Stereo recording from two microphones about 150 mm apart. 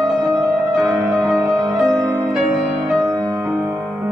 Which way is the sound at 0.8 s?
Centre (ahead or behind).